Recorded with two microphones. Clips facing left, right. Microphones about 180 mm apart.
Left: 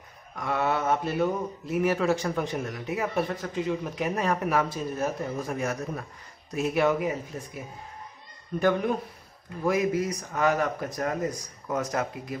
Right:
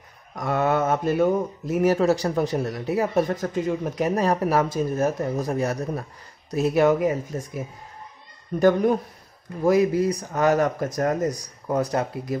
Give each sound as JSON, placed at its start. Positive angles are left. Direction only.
{"t": 0.4, "sound": "speech", "side_deg": -45}
{"t": 8.5, "sound": "speech", "side_deg": -40}
{"t": 11.6, "sound": "speech", "side_deg": -35}